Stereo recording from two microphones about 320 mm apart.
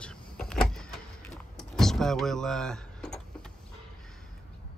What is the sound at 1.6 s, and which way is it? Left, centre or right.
Power windows, centre.